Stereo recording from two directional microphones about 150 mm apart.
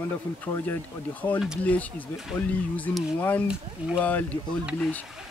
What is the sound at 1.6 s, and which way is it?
Speech, 10° left (ahead or behind).